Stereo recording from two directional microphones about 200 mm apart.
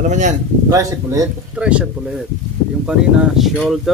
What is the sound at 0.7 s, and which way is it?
Speech, 15° right (ahead or behind).